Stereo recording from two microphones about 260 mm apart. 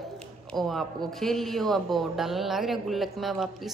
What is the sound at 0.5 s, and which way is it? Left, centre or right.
Speech, centre.